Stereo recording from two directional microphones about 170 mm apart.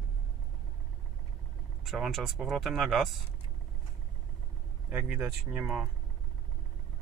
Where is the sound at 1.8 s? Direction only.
Centre (ahead or behind).